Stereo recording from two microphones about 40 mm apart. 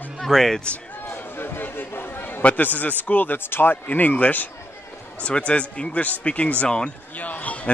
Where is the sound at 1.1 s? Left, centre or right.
Left.